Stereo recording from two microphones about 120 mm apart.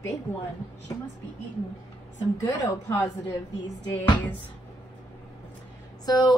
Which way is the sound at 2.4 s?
35° left (ahead or behind).